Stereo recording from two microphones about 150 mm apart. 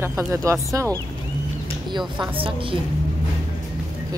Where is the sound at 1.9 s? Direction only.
30° right (ahead or behind).